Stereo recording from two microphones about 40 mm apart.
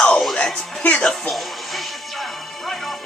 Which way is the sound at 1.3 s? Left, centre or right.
Centre.